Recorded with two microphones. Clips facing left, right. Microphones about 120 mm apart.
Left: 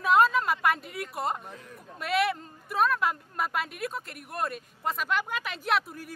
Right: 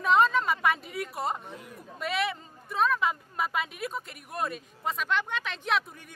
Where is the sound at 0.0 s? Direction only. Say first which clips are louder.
Left 1 dB; 5° left (ahead or behind).